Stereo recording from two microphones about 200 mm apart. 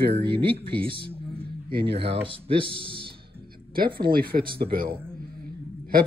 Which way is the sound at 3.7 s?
45° right (ahead or behind).